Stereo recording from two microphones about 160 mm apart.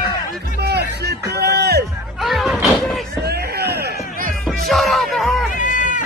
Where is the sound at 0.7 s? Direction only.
90° right.